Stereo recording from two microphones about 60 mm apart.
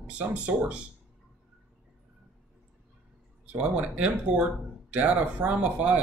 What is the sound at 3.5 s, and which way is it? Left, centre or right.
Speech, right.